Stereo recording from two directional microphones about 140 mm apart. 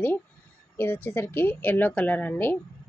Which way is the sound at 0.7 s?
15° left (ahead or behind).